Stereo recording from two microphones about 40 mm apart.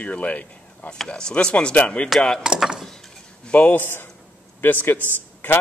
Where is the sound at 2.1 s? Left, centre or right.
Centre.